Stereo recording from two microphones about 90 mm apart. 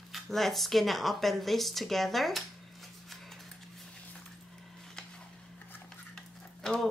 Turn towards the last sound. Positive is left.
turn(degrees=5)  # may be behind; listen again after turning